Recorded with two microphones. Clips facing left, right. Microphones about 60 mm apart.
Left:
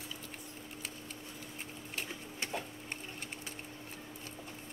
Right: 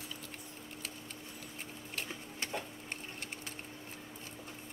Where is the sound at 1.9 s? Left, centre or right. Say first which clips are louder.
Even; centre.